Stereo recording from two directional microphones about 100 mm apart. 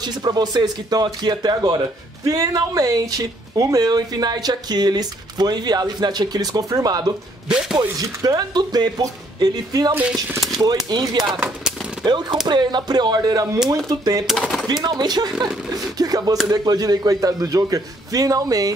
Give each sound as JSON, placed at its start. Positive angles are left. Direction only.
{"t": 0.0, "sound": "speech", "side_deg": -45}
{"t": 7.4, "sound": "a man's voice", "side_deg": -10}
{"t": 8.0, "sound": "speech", "side_deg": -35}
{"t": 14.2, "sound": "speech", "side_deg": 0}
{"t": 14.7, "sound": "speech", "side_deg": -45}